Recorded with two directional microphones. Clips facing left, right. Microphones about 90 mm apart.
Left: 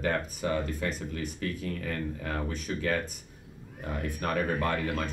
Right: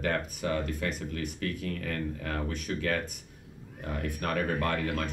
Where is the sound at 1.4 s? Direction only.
20° left (ahead or behind).